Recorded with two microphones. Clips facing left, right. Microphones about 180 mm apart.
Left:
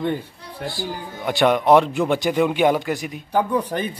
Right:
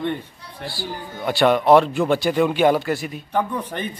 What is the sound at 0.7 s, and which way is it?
A man's voice, 20° left (ahead or behind).